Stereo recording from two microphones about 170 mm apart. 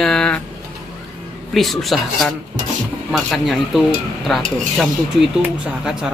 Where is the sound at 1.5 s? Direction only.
Centre (ahead or behind).